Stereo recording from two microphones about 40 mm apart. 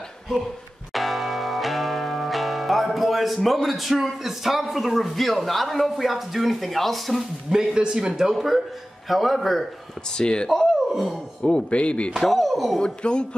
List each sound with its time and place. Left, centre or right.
0.9 s music: centre
3.4 s a man's voice: centre
7.5 s a man's voice: centre
10.1 s a man's voice: left
10.5 s a sound: centre
11.4 s a man's voice: left
12.2 s a man's voice: centre
12.8 s a man's voice: left